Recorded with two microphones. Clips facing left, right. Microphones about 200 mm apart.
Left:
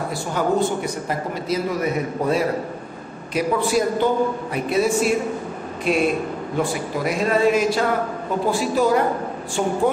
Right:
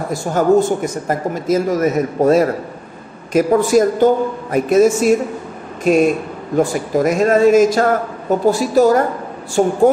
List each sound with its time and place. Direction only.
0.1 s speech: 45° right (ahead or behind)